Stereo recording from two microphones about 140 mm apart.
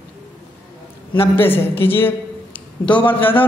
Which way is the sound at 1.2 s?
15° left (ahead or behind).